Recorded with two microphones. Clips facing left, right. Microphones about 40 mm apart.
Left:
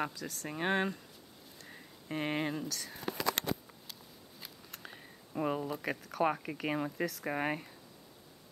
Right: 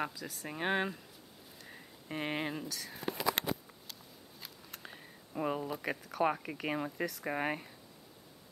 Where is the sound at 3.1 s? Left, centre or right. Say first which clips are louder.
Even; centre.